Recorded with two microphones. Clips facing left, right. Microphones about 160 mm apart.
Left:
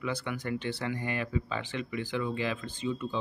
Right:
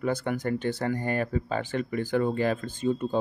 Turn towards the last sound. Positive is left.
turn(degrees=-50)  # may be behind; listen again after turning